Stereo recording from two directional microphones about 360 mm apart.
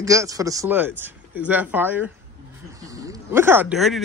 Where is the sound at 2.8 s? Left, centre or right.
Centre.